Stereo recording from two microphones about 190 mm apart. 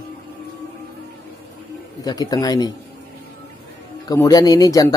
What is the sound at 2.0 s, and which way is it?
Speech, 20° left (ahead or behind).